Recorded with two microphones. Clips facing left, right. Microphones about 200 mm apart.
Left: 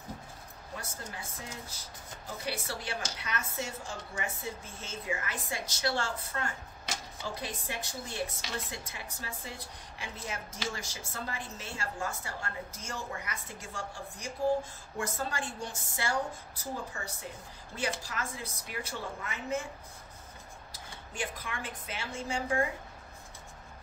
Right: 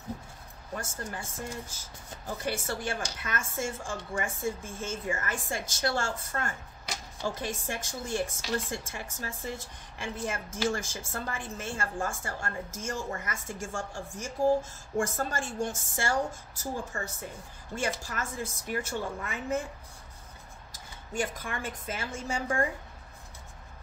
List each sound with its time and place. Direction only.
0.7 s a woman's voice: 45° right (ahead or behind)
2.4 s a woman's voice: 50° right (ahead or behind)
21.1 s a woman's voice: 45° right (ahead or behind)